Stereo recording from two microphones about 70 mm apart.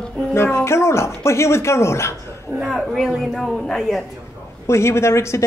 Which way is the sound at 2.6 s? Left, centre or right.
Centre.